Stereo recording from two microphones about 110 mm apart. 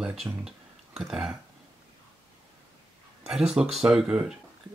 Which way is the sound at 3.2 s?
10° right (ahead or behind).